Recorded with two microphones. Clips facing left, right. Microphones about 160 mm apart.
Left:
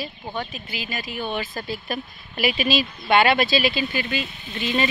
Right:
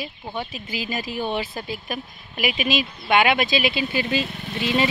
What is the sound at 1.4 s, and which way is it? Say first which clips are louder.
A woman's voice: even; 10° right (ahead or behind).